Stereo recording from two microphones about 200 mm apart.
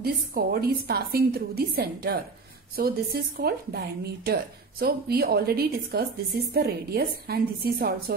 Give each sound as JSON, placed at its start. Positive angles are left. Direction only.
{"t": 0.0, "sound": "a woman's voice", "side_deg": -50}